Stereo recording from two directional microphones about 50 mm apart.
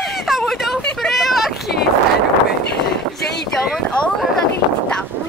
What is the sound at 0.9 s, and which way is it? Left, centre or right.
Vehicle, centre.